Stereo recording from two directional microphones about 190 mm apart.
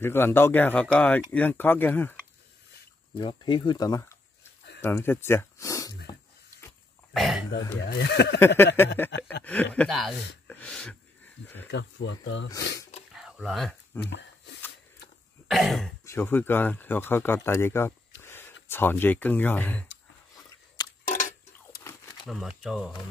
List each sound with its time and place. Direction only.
0.0 s speech: 10° left (ahead or behind)
3.2 s speech: 25° left (ahead or behind)
7.2 s throat clearing: centre (ahead or behind)
7.8 s speech: 60° left (ahead or behind)
8.4 s speech: 10° left (ahead or behind)
10.4 s a sound: 5° left (ahead or behind)
11.6 s speech: 70° left (ahead or behind)
13.1 s a sound: centre (ahead or behind)
14.0 s a sound: 65° left (ahead or behind)
15.4 s cough: centre (ahead or behind)
16.1 s speech: 10° left (ahead or behind)
20.8 s a sound: 20° left (ahead or behind)
22.2 s speech: centre (ahead or behind)